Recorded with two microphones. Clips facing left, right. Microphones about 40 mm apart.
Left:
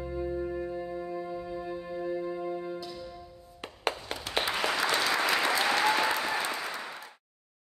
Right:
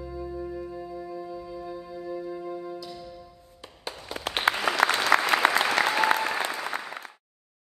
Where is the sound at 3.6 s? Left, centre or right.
Left.